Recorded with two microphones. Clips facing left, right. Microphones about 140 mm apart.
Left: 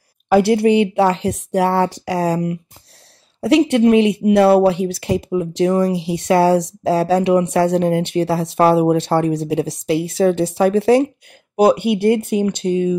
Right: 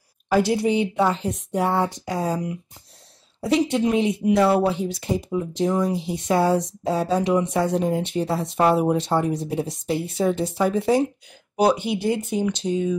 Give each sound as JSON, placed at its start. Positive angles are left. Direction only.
{"t": 0.3, "sound": "speech", "side_deg": 65}
{"t": 11.5, "sound": "speech", "side_deg": 55}